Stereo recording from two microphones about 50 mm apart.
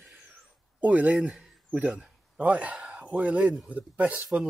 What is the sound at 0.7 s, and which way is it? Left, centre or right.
Speech, right.